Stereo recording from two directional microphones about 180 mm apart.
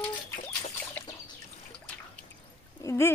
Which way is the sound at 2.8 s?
15° left (ahead or behind).